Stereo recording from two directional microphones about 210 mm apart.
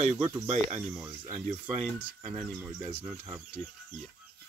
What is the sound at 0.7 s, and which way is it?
Speech, 10° right (ahead or behind).